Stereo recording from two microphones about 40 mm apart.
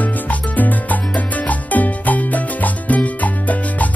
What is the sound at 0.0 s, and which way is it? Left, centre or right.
Music, left.